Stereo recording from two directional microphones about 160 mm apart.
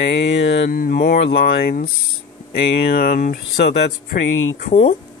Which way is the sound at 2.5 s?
80° left.